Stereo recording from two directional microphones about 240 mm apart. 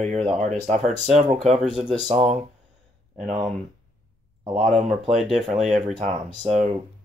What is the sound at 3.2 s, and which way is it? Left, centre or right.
Speech, right.